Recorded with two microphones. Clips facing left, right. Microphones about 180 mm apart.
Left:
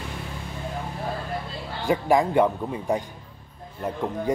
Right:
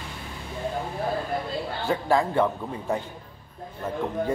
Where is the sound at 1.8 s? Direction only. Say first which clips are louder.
Left 3 dB; 15° left (ahead or behind).